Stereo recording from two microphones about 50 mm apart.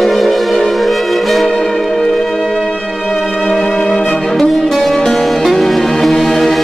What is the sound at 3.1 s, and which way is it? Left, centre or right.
Music, centre.